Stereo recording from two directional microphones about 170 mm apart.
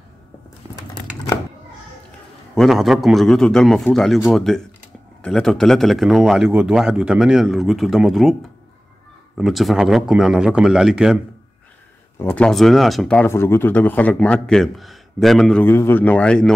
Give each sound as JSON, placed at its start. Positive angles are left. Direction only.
{"t": 2.5, "sound": "a man's voice", "side_deg": 0}
{"t": 9.4, "sound": "a man's voice", "side_deg": 0}
{"t": 12.2, "sound": "speech", "side_deg": 10}